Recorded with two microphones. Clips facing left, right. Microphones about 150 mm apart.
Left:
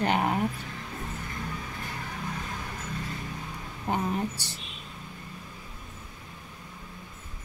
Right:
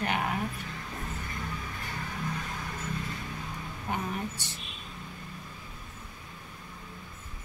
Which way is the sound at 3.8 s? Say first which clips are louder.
Left 5 dB; 35° left (ahead or behind).